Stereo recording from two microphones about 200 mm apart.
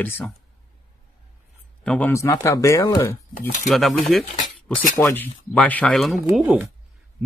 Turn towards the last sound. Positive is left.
turn(degrees=-10)  # may be behind; listen again after turning